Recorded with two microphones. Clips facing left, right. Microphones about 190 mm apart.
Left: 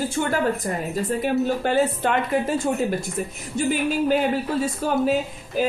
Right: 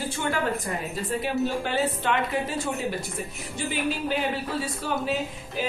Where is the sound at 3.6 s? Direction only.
45° left (ahead or behind).